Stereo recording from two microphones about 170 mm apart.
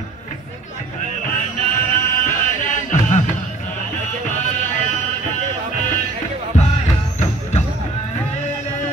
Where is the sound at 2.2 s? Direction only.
45° left (ahead or behind).